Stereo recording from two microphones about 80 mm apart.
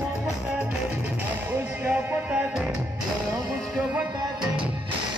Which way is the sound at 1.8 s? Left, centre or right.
Centre.